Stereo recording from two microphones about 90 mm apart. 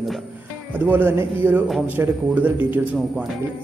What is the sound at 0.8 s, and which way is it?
A man's voice, 20° right (ahead or behind).